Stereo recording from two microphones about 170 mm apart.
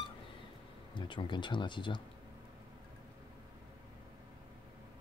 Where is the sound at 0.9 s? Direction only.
30° left (ahead or behind).